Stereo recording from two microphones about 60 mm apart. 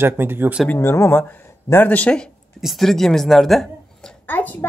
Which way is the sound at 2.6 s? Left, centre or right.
Centre.